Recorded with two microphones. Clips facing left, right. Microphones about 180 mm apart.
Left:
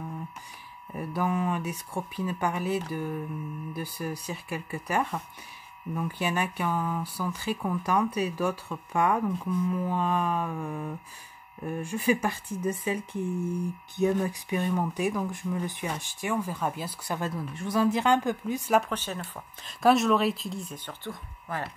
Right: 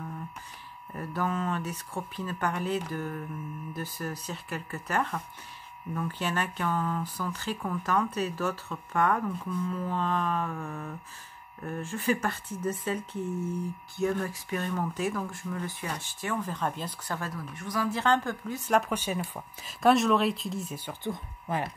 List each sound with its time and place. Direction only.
0.9 s speech: 10° left (ahead or behind)
17.2 s speech: 25° left (ahead or behind)
18.9 s speech: 10° right (ahead or behind)
19.8 s speech: centre (ahead or behind)
21.1 s speech: 20° right (ahead or behind)